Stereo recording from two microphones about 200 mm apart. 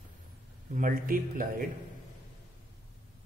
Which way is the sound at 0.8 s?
45° right (ahead or behind).